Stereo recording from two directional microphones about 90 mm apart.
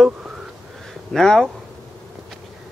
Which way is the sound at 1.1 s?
5° left (ahead or behind).